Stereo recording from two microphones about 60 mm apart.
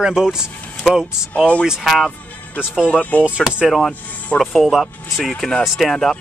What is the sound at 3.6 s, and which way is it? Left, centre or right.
Speech, centre.